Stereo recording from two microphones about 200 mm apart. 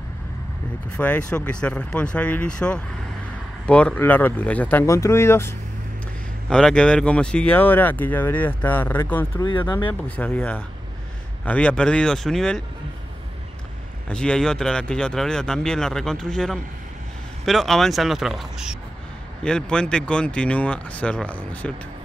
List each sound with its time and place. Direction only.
0.9 s speech: 5° left (ahead or behind)
6.5 s speech: 5° left (ahead or behind)
9.5 s speech: 25° left (ahead or behind)
10.0 s speech: 10° left (ahead or behind)
14.0 s speech: 5° left (ahead or behind)